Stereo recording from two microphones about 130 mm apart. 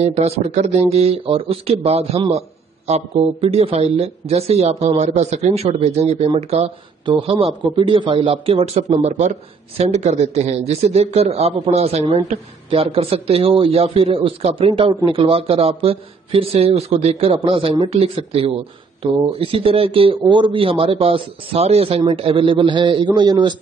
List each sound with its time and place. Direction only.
0.0 s a man's voice: 55° right (ahead or behind)
14.7 s a man's voice: 30° right (ahead or behind)